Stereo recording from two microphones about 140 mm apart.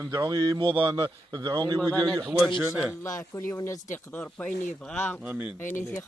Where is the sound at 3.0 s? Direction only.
25° left (ahead or behind).